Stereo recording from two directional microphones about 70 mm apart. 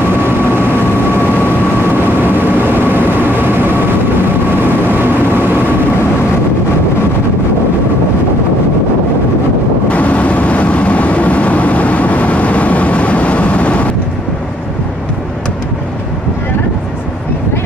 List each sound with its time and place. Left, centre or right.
2.0 s vehicle: right
4.9 s vehicle: right
9.8 s vehicle: centre